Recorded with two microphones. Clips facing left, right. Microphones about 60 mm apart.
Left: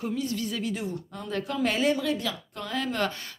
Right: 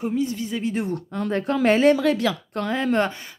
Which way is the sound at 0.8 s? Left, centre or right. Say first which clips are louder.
Right 8 dB; right.